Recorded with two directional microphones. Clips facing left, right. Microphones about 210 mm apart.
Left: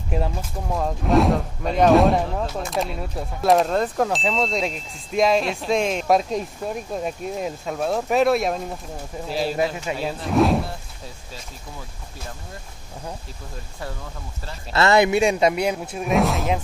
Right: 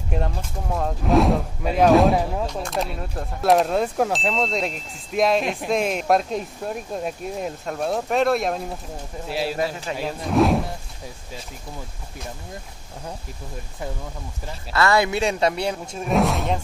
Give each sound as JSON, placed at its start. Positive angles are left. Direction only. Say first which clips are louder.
{"t": 0.1, "sound": "speech", "louder": "left 1 dB", "side_deg": 0}
{"t": 9.9, "sound": "speech", "louder": "left 1 dB", "side_deg": 10}
{"t": 10.2, "sound": "speech", "louder": "even", "side_deg": 0}
{"t": 14.7, "sound": "speech", "louder": "left 3 dB", "side_deg": 25}